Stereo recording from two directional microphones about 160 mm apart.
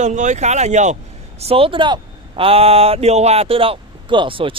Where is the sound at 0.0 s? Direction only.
50° right (ahead or behind).